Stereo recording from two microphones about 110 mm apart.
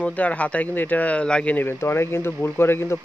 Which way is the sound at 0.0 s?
10° left (ahead or behind).